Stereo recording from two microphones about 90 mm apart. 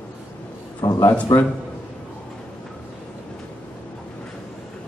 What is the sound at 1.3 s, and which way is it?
Speech, 35° left (ahead or behind).